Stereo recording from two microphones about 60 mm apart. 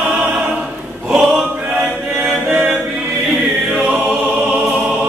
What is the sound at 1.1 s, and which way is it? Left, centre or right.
Choir, centre.